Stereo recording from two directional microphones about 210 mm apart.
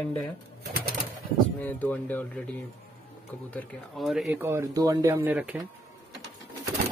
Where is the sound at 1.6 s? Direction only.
10° left (ahead or behind).